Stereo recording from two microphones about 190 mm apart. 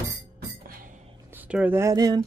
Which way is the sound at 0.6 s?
45° right (ahead or behind).